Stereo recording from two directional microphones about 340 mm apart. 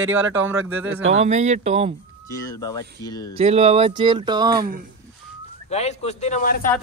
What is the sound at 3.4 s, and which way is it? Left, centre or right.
Speech, centre.